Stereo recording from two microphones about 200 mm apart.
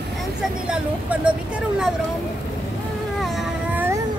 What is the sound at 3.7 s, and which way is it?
Music, 10° right (ahead or behind).